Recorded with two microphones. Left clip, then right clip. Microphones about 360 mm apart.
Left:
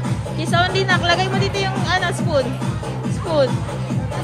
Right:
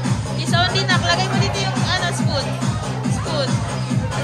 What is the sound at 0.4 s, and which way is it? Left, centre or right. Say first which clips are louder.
Music: left 1 dB; centre.